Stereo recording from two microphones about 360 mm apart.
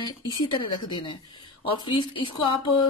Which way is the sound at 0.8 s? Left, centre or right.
Centre.